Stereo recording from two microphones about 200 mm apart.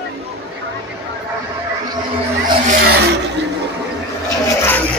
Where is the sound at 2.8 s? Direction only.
55° right (ahead or behind).